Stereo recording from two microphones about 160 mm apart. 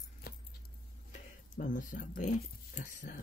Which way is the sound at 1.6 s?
55° left (ahead or behind).